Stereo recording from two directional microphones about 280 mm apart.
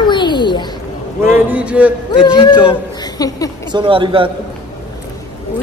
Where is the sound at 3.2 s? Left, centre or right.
Centre.